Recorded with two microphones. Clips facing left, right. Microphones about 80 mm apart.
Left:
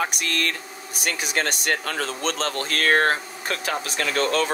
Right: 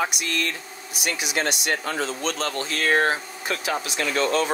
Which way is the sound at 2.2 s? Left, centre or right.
Left.